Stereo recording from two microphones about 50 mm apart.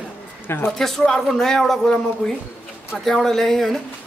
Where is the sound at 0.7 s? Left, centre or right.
Centre.